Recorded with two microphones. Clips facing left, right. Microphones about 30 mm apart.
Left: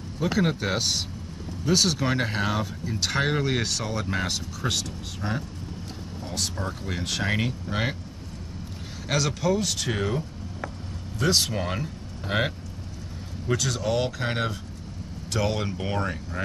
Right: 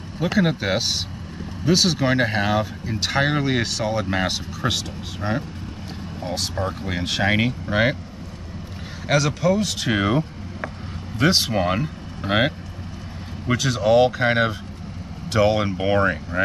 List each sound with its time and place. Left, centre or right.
0.2 s speech: right
9.0 s speech: centre
9.8 s speech: right